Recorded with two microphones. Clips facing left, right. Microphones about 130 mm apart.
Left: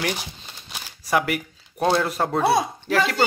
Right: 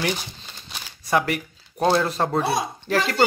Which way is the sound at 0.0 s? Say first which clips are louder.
Right 1 dB; 5° left (ahead or behind).